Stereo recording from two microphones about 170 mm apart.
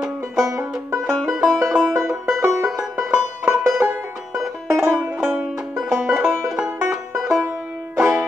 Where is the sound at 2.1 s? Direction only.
Centre (ahead or behind).